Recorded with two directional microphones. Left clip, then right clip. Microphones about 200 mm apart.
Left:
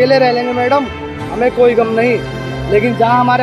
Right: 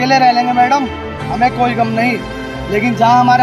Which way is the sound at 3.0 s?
50° right (ahead or behind).